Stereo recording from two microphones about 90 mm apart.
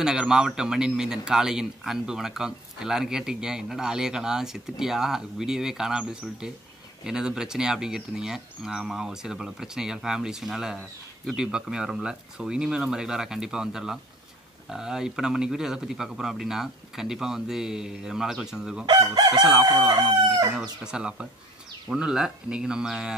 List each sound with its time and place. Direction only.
0.0 s a man's voice: 10° right (ahead or behind)
18.9 s chicken: 50° right (ahead or behind)
20.8 s a man's voice: 10° right (ahead or behind)